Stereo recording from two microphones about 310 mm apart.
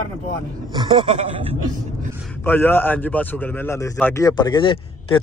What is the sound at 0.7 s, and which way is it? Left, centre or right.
Speech, centre.